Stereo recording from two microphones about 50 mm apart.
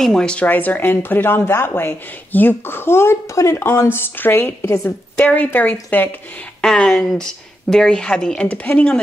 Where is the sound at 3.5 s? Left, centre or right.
Left.